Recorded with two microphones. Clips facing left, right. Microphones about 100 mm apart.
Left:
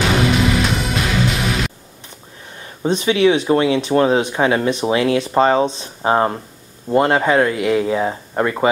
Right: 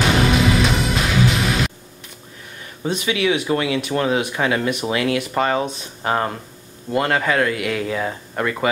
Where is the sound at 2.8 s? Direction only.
30° left (ahead or behind).